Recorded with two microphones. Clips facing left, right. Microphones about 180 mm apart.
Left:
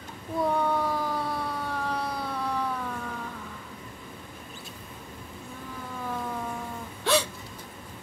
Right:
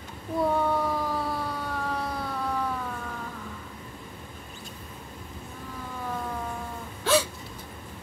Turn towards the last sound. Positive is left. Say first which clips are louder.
# right 2 dB
turn(degrees=0)  # may be behind; listen again after turning